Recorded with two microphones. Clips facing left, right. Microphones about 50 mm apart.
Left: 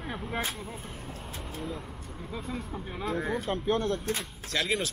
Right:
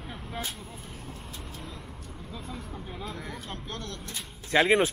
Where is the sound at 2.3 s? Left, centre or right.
Left.